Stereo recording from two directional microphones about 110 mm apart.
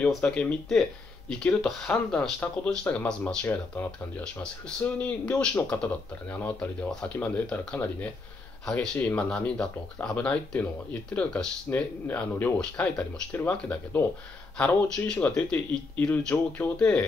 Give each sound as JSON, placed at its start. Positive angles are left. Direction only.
{"t": 0.0, "sound": "speech", "side_deg": 10}
{"t": 1.6, "sound": "speech", "side_deg": 10}